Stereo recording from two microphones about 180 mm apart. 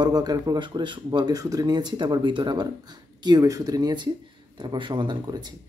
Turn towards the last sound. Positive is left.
turn(degrees=-25)  # may be behind; listen again after turning